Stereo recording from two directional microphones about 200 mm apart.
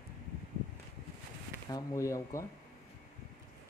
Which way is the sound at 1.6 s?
15° left (ahead or behind).